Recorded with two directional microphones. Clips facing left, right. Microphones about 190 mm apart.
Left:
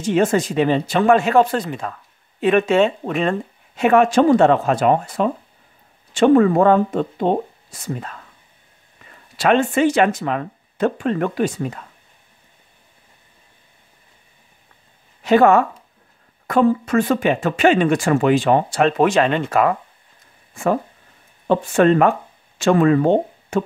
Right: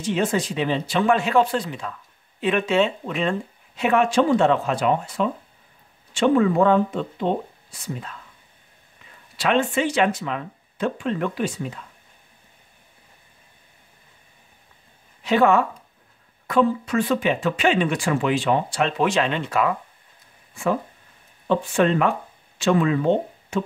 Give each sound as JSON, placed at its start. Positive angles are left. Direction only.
{"t": 0.0, "sound": "speech", "side_deg": 50}
{"t": 9.4, "sound": "speech", "side_deg": 50}
{"t": 15.2, "sound": "speech", "side_deg": 50}